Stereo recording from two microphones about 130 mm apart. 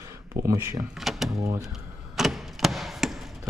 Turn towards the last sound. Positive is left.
turn(degrees=0)  # may be behind; listen again after turning